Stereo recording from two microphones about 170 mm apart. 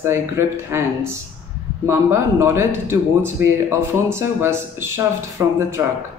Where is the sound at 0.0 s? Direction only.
15° right (ahead or behind).